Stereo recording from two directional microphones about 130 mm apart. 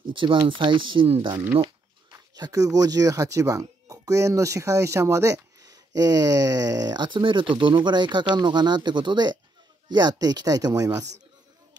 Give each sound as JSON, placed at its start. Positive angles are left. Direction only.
{"t": 0.1, "sound": "speech", "side_deg": -40}
{"t": 2.1, "sound": "speech", "side_deg": -30}